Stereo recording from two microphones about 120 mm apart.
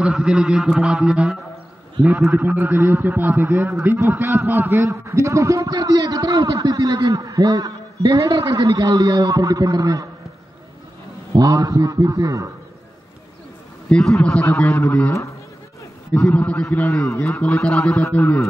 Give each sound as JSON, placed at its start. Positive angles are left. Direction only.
{"t": 0.0, "sound": "a man's voice", "side_deg": -5}
{"t": 11.3, "sound": "a man's voice", "side_deg": -30}
{"t": 13.8, "sound": "speech", "side_deg": 5}